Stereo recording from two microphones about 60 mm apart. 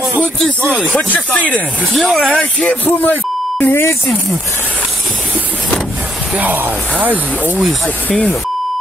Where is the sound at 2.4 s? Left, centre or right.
Centre.